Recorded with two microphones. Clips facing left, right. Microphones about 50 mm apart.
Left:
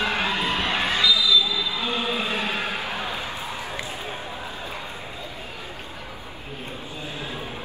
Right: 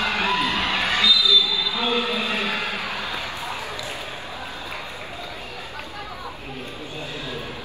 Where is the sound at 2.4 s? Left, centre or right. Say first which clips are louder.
Right 1 dB; right.